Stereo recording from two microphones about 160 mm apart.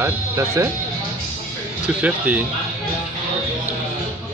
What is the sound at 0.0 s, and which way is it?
Speech, 15° right (ahead or behind).